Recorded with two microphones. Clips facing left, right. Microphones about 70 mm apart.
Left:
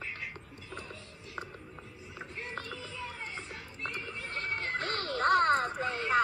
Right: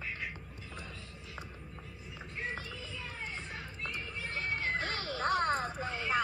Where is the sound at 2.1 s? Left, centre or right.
Left.